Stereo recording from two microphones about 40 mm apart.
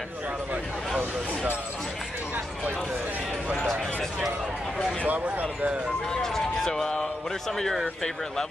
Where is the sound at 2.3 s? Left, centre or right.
Right.